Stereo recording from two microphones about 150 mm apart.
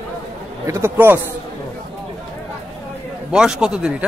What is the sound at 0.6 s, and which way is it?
Speech, 20° right (ahead or behind).